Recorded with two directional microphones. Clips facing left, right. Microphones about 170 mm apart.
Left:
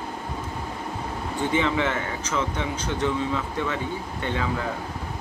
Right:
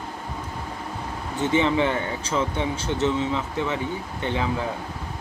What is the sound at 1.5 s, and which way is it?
Speech, 30° right (ahead or behind).